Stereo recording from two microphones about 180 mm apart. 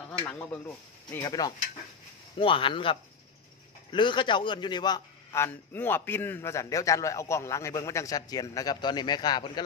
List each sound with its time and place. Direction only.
0.2 s a man's voice: 5° left (ahead or behind)
1.1 s speech: 20° left (ahead or behind)
2.3 s a man's voice: 30° left (ahead or behind)